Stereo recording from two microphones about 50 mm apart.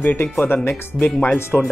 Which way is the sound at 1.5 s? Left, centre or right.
Left.